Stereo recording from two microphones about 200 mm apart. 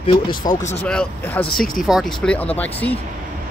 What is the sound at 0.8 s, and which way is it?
Speech, 5° left (ahead or behind).